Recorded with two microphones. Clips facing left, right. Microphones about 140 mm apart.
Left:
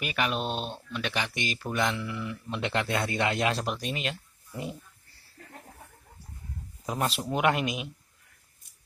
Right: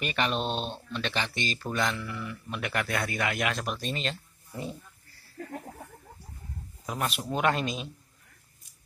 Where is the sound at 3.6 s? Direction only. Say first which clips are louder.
Left 1 dB; 15° left (ahead or behind).